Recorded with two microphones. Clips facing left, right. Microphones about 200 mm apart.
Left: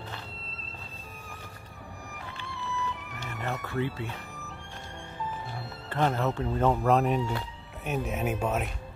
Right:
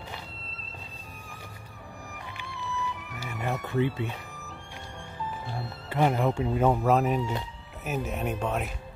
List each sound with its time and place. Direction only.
2.8 s music: 5° right (ahead or behind)
3.6 s speech: 20° right (ahead or behind)
5.9 s speech: 10° right (ahead or behind)